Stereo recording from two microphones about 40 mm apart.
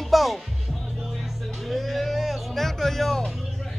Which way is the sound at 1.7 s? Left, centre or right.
Centre.